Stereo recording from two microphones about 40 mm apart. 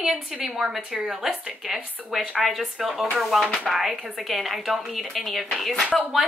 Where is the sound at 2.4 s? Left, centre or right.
Centre.